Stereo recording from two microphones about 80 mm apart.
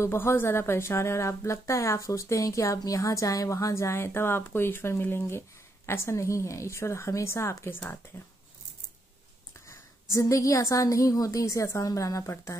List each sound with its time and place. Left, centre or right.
0.0 s a woman's voice: left
10.1 s a woman's voice: left